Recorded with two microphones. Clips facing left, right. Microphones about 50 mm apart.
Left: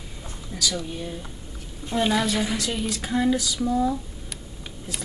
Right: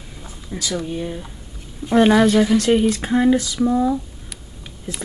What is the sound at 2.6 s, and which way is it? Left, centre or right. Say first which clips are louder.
Speech: right 11 dB; right.